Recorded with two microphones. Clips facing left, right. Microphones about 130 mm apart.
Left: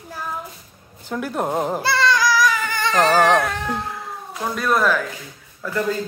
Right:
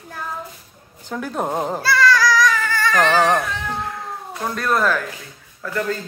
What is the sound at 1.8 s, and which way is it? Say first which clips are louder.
Child singing: right 4 dB; 25° left (ahead or behind).